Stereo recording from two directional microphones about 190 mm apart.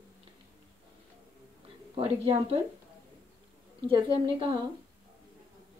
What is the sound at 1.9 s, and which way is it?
Speech, 30° right (ahead or behind).